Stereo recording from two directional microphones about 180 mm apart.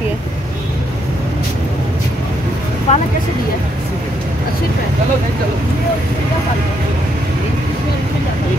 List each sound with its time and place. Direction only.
2.9 s speech: 40° left (ahead or behind)